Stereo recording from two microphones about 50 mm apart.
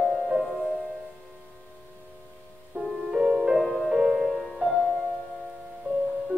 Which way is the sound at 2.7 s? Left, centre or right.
Centre.